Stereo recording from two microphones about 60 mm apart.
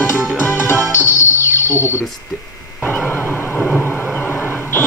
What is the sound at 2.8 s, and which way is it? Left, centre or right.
Vehicle, left.